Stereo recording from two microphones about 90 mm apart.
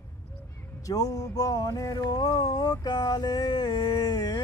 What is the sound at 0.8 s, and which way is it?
Music, 40° left (ahead or behind).